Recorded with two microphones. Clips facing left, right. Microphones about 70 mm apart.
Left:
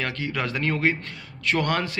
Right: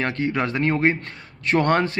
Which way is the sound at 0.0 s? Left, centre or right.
Right.